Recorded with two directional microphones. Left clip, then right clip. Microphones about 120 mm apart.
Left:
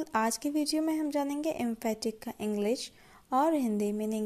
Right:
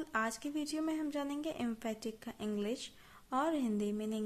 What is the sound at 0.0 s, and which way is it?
A woman's voice, 40° left (ahead or behind).